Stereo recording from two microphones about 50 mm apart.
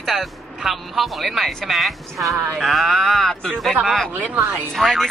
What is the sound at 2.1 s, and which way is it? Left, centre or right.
Speech, right.